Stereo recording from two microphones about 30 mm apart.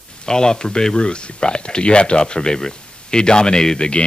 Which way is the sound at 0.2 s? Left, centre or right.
Left.